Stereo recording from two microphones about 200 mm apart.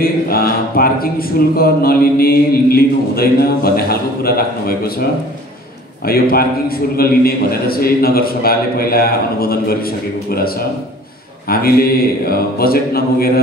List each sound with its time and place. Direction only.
0.0 s a man's voice: 45° left (ahead or behind)
6.0 s a man's voice: 50° left (ahead or behind)
11.4 s a man's voice: 50° left (ahead or behind)